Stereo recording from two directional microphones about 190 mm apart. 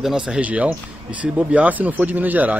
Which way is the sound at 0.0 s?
5° right (ahead or behind).